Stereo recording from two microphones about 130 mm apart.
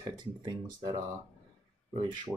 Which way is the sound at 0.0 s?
35° right (ahead or behind).